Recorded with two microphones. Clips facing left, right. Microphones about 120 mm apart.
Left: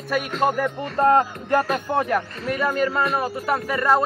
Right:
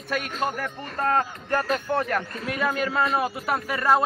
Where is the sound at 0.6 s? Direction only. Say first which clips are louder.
Left 8 dB; 25° left (ahead or behind).